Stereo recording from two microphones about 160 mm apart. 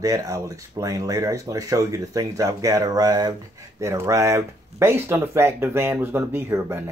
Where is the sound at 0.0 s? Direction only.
20° right (ahead or behind).